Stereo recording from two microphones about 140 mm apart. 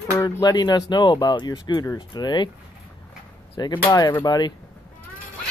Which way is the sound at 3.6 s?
30° left (ahead or behind).